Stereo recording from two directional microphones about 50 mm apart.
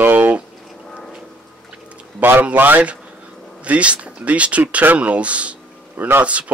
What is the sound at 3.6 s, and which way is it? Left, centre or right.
Speech, right.